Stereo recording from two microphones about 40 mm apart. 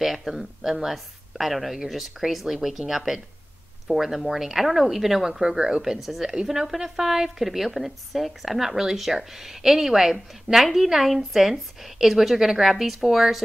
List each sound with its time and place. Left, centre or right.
0.0 s speech: centre
5.6 s speech: centre
5.9 s speech: centre